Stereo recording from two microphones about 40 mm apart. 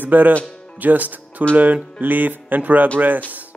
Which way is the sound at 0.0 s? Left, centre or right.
Right.